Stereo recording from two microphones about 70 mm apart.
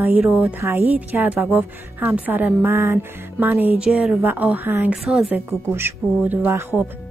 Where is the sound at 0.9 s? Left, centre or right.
Right.